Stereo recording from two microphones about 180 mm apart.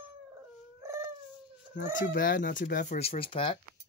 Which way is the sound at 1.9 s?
50° left (ahead or behind).